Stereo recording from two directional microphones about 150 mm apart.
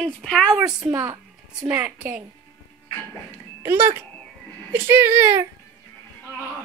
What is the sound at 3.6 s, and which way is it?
A woman's voice, 15° right (ahead or behind).